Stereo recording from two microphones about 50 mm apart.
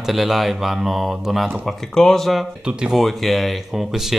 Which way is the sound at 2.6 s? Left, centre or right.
Centre.